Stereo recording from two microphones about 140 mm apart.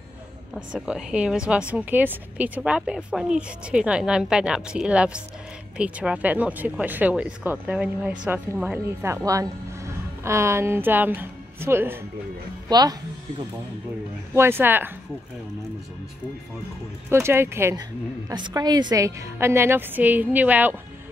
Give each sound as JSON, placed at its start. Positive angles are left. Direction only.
{"t": 0.6, "sound": "a woman's voice", "side_deg": -5}
{"t": 9.0, "sound": "speech", "side_deg": -20}
{"t": 12.6, "sound": "speech", "side_deg": -30}
{"t": 14.3, "sound": "a woman's voice", "side_deg": -15}
{"t": 17.1, "sound": "a woman's voice", "side_deg": -20}
{"t": 18.3, "sound": "a woman's voice", "side_deg": -30}